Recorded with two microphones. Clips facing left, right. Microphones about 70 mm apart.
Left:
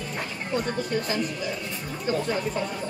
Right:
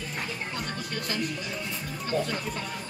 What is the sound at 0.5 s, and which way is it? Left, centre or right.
Speech, left.